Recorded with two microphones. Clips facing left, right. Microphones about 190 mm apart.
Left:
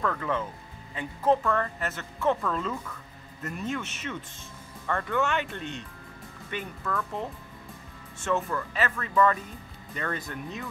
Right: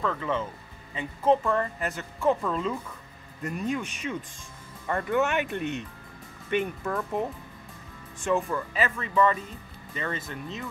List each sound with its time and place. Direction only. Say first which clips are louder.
0.0 s speech: right 1 dB; 5° right (ahead or behind)
3.7 s speech: right 3 dB; 10° right (ahead or behind)
8.2 s speech: right 2 dB; 15° right (ahead or behind)